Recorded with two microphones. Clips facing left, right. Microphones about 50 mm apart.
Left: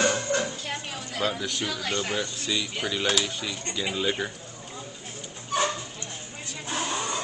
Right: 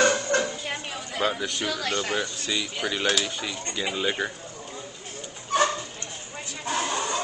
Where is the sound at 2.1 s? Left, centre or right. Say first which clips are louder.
Right 1 dB; centre.